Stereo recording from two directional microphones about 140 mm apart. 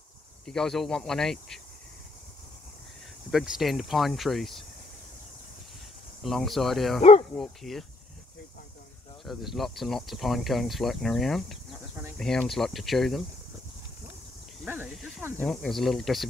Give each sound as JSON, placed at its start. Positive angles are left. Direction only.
{"t": 0.5, "sound": "speech", "side_deg": 5}
{"t": 3.3, "sound": "speech", "side_deg": -5}
{"t": 6.2, "sound": "speech", "side_deg": 0}
{"t": 7.0, "sound": "speech", "side_deg": 45}
{"t": 7.3, "sound": "speech", "side_deg": 0}
{"t": 9.2, "sound": "speech", "side_deg": 0}
{"t": 14.9, "sound": "speech", "side_deg": 0}